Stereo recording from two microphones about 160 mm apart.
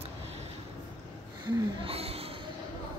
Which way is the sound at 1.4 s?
30° right (ahead or behind).